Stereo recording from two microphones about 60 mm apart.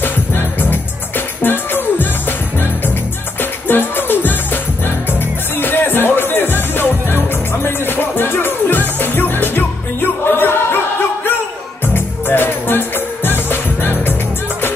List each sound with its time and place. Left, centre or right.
0.0 s music: left